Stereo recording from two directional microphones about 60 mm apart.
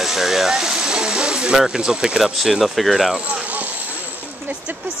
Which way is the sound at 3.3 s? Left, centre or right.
Right.